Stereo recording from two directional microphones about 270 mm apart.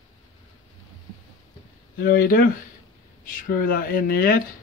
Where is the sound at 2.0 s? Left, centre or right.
Left.